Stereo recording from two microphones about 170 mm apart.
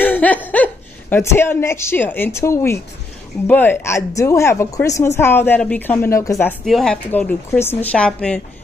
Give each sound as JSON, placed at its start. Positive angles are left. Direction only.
{"t": 0.0, "sound": "laughter", "side_deg": 10}
{"t": 1.1, "sound": "speech", "side_deg": 15}
{"t": 6.6, "sound": "a woman's voice", "side_deg": 0}